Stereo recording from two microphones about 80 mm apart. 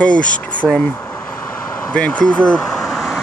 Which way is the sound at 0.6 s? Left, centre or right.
Centre.